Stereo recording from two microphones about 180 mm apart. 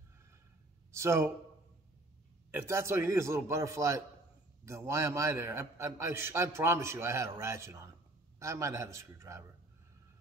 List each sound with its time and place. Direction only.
0.9 s a man's voice: 15° right (ahead or behind)
2.5 s a man's voice: 15° right (ahead or behind)